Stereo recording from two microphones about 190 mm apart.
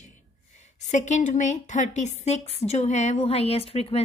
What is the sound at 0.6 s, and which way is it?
A woman's voice, 40° left (ahead or behind).